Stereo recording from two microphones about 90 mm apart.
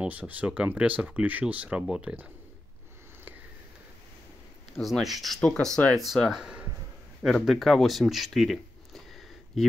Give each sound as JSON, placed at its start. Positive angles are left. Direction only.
{"t": 0.0, "sound": "speech", "side_deg": -15}
{"t": 4.7, "sound": "speech", "side_deg": 0}
{"t": 6.4, "sound": "a sound", "side_deg": -10}
{"t": 7.2, "sound": "speech", "side_deg": 0}